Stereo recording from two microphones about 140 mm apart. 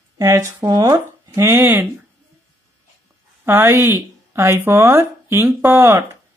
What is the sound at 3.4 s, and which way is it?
Speech, 15° right (ahead or behind).